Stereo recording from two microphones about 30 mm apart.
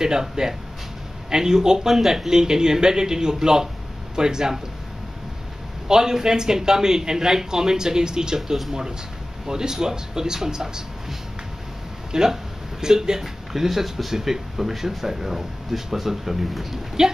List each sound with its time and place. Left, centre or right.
0.0 s speech: right
5.9 s speech: centre
9.5 s speech: right
12.1 s speech: right
13.2 s speech: centre